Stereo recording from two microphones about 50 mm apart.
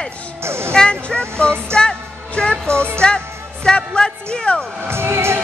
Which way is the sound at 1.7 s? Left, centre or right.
Centre.